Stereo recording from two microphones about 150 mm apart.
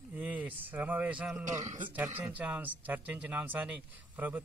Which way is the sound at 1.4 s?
55° right (ahead or behind).